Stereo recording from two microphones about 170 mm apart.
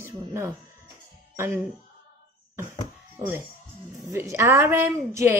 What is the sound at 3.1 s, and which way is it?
Speech, 15° right (ahead or behind).